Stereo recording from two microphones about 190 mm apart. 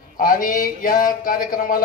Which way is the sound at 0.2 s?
45° left (ahead or behind).